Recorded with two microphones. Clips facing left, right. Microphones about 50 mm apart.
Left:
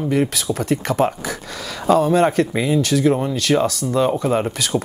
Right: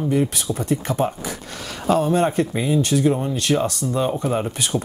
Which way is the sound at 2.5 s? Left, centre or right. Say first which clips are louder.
Left 2 dB; left.